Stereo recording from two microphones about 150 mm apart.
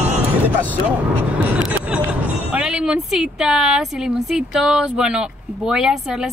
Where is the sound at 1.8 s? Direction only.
10° right (ahead or behind).